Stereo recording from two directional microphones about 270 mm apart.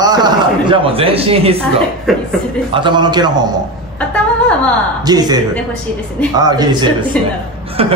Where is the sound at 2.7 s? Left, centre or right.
Centre.